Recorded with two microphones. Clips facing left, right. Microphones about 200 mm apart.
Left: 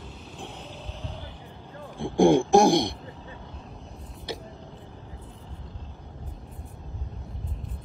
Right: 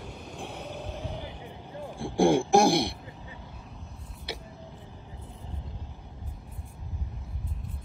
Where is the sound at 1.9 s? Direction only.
15° left (ahead or behind).